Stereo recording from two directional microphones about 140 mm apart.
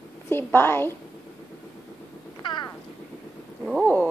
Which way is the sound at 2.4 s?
35° left (ahead or behind).